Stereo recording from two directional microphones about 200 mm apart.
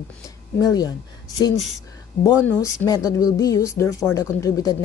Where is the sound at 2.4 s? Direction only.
15° left (ahead or behind).